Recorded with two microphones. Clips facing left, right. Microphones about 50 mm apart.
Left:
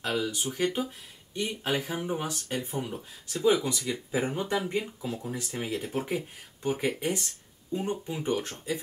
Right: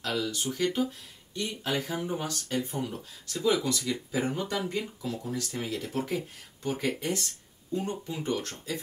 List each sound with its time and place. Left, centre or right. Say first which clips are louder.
0.0 s speech: left 1 dB; left